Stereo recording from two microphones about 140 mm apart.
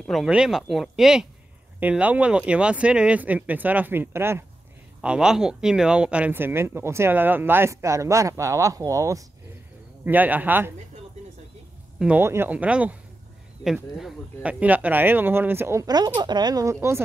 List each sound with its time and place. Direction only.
0.0 s speech: centre (ahead or behind); by 4.5 s 15° right (ahead or behind)
5.0 s speech: 5° right (ahead or behind); by 9.2 s 20° right (ahead or behind)
10.0 s speech: 10° right (ahead or behind)
12.2 s speech: 15° right (ahead or behind)